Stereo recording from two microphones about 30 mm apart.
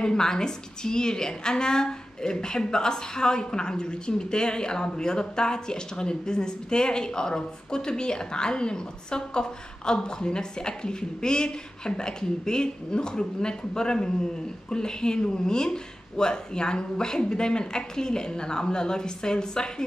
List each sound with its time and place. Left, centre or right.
0.0 s a woman's voice: left